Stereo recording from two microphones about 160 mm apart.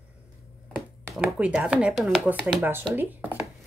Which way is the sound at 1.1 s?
5° right (ahead or behind).